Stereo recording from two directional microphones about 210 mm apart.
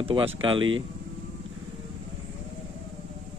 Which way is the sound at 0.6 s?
70° right (ahead or behind).